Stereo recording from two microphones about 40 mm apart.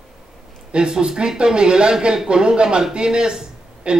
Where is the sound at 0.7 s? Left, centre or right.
Right.